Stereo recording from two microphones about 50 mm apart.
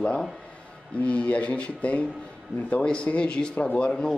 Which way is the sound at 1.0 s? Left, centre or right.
Left.